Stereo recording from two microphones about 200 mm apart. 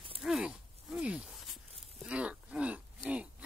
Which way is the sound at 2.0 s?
5° right (ahead or behind).